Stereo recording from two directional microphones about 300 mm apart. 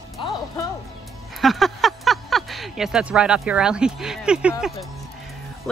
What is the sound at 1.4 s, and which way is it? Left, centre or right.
Speech, centre.